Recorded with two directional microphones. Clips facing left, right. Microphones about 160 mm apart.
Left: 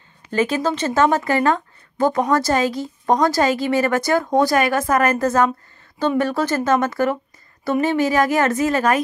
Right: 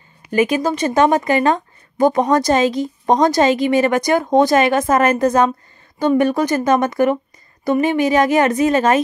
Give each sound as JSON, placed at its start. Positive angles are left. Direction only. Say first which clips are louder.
{"t": 0.3, "sound": "speech", "louder": "right 3 dB", "side_deg": -10}